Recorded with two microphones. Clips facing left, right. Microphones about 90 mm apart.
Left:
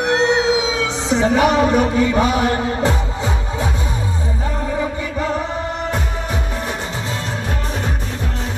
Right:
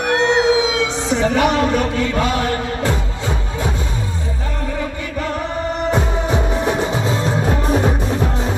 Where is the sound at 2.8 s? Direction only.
20° left (ahead or behind).